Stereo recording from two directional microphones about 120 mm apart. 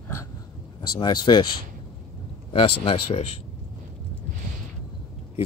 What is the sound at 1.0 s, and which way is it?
Speech, 40° left (ahead or behind).